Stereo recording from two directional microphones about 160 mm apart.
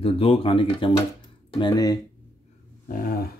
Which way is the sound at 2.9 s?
65° left (ahead or behind).